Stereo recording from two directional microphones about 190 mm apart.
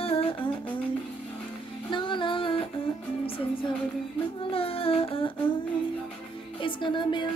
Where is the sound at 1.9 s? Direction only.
25° left (ahead or behind).